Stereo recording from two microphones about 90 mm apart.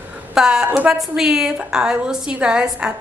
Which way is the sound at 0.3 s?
5° right (ahead or behind).